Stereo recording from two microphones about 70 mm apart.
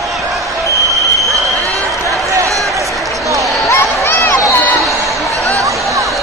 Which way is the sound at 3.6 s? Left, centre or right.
Left.